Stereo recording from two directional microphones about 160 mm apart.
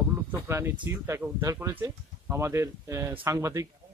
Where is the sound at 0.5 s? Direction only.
15° right (ahead or behind).